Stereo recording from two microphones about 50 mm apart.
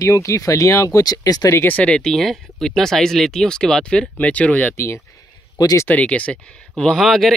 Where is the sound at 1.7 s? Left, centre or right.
Left.